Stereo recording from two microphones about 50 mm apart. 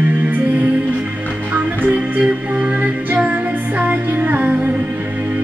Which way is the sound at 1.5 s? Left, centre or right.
Right.